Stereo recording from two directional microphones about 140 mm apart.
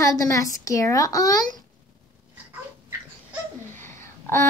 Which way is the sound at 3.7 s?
15° left (ahead or behind).